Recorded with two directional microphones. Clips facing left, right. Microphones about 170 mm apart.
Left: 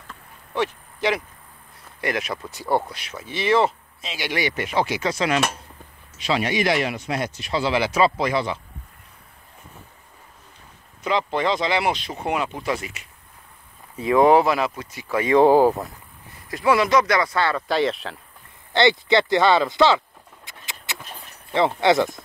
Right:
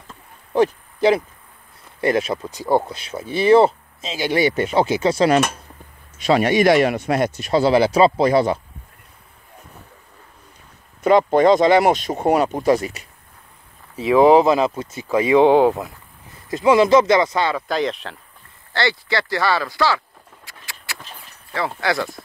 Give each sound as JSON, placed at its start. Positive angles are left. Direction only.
{"t": 0.6, "sound": "speech", "side_deg": -30}
{"t": 3.1, "sound": "speech", "side_deg": -30}
{"t": 6.1, "sound": "speech", "side_deg": -50}
{"t": 11.1, "sound": "speech", "side_deg": -45}
{"t": 14.3, "sound": "speech", "side_deg": -25}
{"t": 15.3, "sound": "speech", "side_deg": 5}
{"t": 16.4, "sound": "speech", "side_deg": -25}
{"t": 17.6, "sound": "speech", "side_deg": 0}
{"t": 18.7, "sound": "speech", "side_deg": 20}
{"t": 20.4, "sound": "a sound", "side_deg": 20}
{"t": 21.5, "sound": "speech", "side_deg": 20}